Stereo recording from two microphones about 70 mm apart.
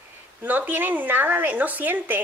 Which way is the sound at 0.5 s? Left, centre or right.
Right.